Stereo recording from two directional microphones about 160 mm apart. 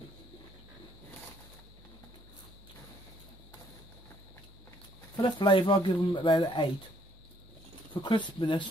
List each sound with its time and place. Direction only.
5.1 s speech: 30° left (ahead or behind)
7.9 s speech: 30° left (ahead or behind)